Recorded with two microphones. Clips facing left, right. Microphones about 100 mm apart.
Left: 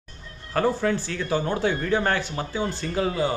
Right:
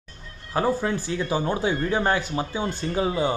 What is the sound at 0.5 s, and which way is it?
Speech, 15° right (ahead or behind).